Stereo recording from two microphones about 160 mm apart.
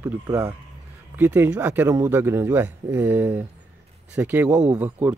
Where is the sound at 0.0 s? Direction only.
15° right (ahead or behind).